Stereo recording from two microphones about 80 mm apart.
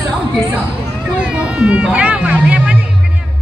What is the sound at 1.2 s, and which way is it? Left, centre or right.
Speech, centre.